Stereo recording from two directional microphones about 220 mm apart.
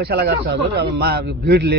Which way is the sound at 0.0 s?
50° right (ahead or behind).